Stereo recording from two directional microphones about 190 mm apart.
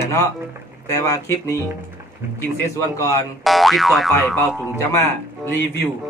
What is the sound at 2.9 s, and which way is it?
Speech, 15° left (ahead or behind).